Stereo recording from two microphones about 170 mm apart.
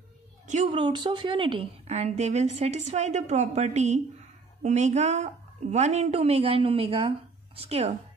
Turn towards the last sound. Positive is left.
turn(degrees=-40)  # may be behind; listen again after turning